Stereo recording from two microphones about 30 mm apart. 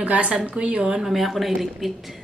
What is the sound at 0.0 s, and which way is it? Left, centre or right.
Speech, right.